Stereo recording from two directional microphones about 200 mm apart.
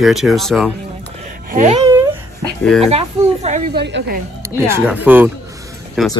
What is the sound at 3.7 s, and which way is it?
Speech, 60° right (ahead or behind).